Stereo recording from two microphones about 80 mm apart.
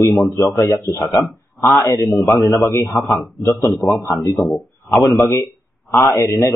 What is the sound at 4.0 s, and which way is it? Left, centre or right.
A man's voice, left.